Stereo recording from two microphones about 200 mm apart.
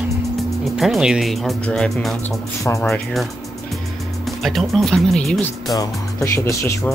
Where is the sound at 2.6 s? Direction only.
15° left (ahead or behind).